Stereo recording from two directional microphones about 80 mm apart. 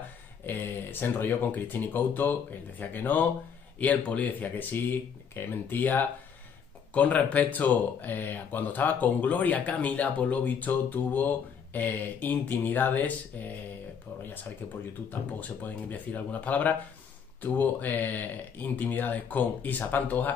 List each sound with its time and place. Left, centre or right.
0.5 s speech: left
15.0 s speech: left